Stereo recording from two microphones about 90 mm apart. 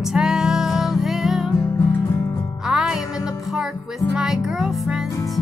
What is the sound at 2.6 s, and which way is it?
Music, 5° right (ahead or behind).